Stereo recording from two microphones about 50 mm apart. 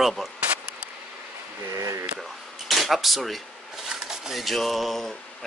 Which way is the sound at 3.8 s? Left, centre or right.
Centre.